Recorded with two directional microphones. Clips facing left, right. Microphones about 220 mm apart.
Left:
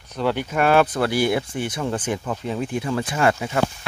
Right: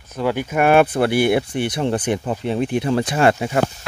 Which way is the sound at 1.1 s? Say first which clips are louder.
Right 4 dB; 60° right (ahead or behind).